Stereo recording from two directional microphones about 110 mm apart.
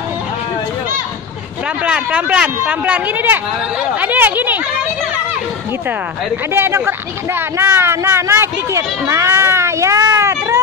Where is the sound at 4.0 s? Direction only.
15° right (ahead or behind).